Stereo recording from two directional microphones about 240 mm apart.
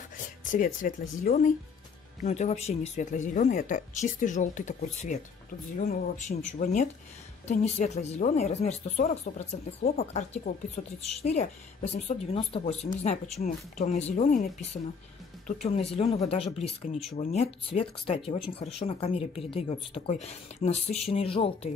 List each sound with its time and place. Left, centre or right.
0.5 s speech: left